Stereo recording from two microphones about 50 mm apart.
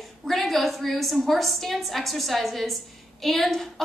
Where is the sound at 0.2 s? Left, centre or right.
Centre.